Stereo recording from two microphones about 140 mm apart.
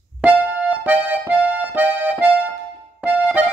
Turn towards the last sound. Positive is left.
turn(degrees=-10)  # may be behind; listen again after turning